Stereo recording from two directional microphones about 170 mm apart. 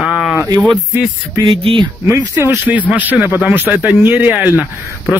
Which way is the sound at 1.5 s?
30° right (ahead or behind).